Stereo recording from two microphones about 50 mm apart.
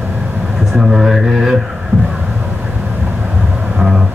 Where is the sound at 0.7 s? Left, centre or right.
Centre.